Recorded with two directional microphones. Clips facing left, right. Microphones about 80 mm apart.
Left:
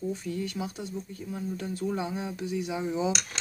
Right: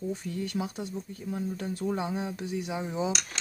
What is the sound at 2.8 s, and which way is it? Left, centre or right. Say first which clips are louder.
Speech: left 3 dB; right.